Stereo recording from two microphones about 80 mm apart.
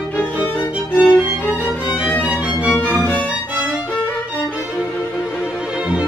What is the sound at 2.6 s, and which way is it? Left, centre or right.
Music, left.